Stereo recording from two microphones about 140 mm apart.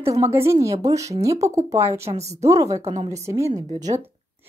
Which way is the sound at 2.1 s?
50° right (ahead or behind).